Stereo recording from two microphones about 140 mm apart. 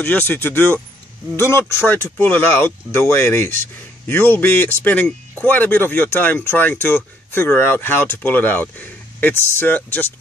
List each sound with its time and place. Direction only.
0.0 s speech: 15° left (ahead or behind)